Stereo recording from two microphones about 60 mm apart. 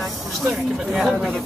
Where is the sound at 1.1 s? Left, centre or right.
Centre.